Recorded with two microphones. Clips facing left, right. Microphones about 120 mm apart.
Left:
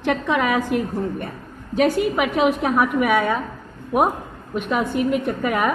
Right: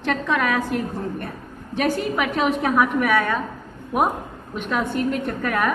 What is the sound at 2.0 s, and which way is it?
A woman's voice, 15° left (ahead or behind).